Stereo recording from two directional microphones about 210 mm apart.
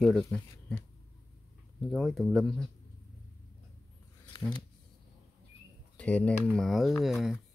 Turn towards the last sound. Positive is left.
turn(degrees=0)  # may be behind; listen again after turning